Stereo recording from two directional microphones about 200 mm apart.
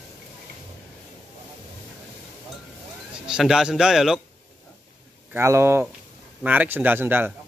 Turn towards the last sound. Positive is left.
turn(degrees=-10)  # may be behind; listen again after turning